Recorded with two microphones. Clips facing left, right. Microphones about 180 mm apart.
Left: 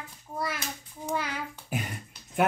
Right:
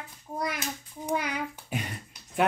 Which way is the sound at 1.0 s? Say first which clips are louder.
Right 2 dB; 15° right (ahead or behind).